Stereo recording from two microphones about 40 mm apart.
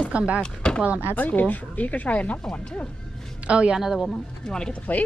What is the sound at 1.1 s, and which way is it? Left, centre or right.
Speech, left.